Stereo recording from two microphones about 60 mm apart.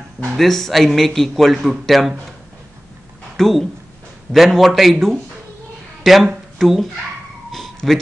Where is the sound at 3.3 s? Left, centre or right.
Centre.